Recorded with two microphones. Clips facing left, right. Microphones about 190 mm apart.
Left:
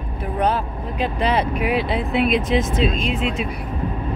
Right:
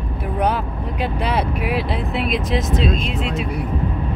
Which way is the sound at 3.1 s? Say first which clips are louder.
Left 1 dB; 40° right (ahead or behind).